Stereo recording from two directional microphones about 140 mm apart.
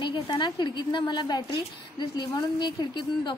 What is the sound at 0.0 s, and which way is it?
A woman's voice, 35° left (ahead or behind).